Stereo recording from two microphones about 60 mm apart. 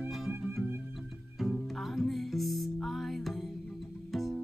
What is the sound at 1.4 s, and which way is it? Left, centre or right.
Music, centre.